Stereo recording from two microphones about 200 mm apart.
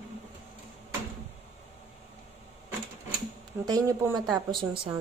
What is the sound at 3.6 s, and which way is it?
Speech, 15° right (ahead or behind).